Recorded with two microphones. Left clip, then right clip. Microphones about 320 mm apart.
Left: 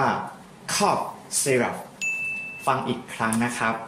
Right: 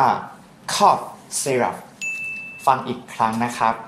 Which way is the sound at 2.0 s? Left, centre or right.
Centre.